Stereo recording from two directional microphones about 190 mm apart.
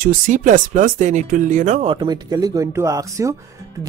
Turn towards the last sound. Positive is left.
turn(degrees=-15)  # may be behind; listen again after turning